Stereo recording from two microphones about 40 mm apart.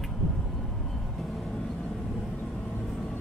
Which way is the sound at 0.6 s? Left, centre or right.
Centre.